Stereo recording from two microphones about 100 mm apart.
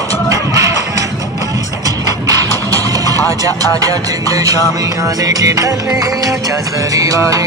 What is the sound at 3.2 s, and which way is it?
Music, 35° right (ahead or behind).